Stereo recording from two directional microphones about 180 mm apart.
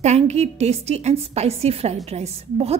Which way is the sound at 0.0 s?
40° right (ahead or behind).